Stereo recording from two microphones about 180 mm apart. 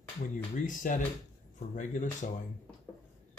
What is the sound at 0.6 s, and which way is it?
Speech, 45° left (ahead or behind).